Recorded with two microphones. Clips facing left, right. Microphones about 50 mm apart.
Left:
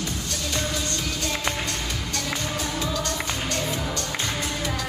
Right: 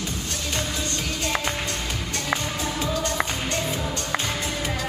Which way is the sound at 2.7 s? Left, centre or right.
Right.